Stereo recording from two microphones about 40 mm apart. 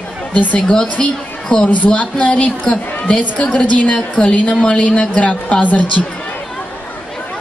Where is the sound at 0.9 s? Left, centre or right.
Left.